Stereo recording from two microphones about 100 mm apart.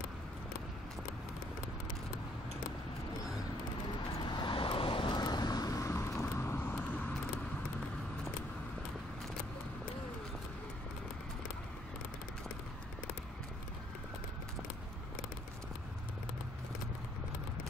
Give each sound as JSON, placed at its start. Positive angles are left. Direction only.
{"t": 4.3, "sound": "vehicle", "side_deg": 55}